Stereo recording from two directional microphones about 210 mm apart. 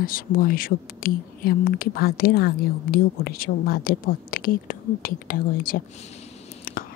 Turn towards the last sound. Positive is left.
turn(degrees=40)  # may be behind; listen again after turning